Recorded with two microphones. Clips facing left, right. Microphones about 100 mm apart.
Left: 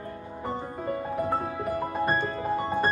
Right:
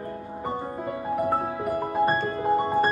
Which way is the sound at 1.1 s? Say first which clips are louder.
Right 6 dB; 15° right (ahead or behind).